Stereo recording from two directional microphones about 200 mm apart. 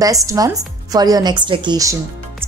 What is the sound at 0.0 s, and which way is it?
A woman's voice, 15° right (ahead or behind).